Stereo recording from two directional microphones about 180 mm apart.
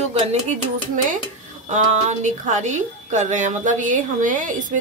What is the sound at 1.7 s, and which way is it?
Speech, 40° right (ahead or behind).